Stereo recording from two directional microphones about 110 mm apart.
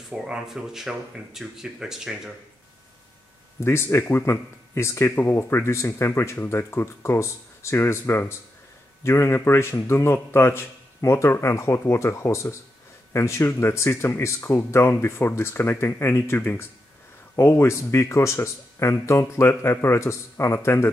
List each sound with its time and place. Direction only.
0.1 s speech: 5° right (ahead or behind)
3.6 s speech: 25° left (ahead or behind)